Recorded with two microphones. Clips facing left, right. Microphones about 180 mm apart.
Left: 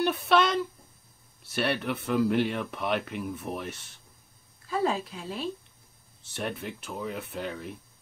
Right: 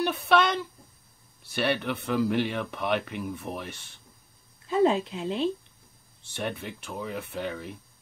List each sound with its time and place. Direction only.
0.0 s speech: centre (ahead or behind)
4.6 s speech: 25° right (ahead or behind)
6.2 s speech: centre (ahead or behind)